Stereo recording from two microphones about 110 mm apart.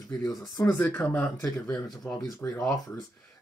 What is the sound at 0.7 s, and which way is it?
Speech, 15° left (ahead or behind).